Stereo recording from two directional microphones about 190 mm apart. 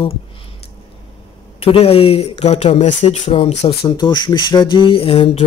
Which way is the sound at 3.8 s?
25° left (ahead or behind).